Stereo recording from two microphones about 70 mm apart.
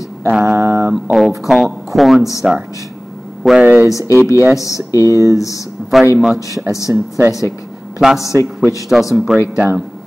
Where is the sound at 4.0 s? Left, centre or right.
Right.